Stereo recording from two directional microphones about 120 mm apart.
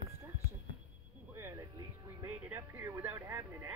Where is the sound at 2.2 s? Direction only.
20° right (ahead or behind).